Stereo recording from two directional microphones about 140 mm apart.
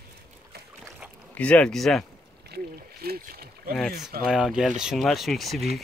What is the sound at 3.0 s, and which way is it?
Speech, 90° right.